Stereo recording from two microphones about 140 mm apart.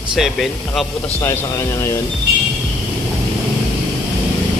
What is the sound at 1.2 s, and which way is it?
Speech, 20° left (ahead or behind).